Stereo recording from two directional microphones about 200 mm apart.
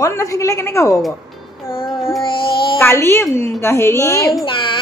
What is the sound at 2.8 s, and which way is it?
A woman's voice, 10° left (ahead or behind).